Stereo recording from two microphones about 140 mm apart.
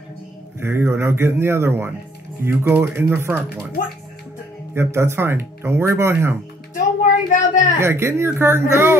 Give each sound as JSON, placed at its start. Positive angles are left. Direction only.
{"t": 0.6, "sound": "speech", "side_deg": -20}
{"t": 3.8, "sound": "speech", "side_deg": 70}
{"t": 4.7, "sound": "speech", "side_deg": -20}
{"t": 7.2, "sound": "a woman's voice", "side_deg": 65}
{"t": 7.8, "sound": "speech", "side_deg": -20}